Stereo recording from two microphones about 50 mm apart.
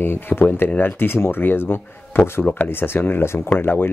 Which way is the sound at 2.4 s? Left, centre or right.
Left.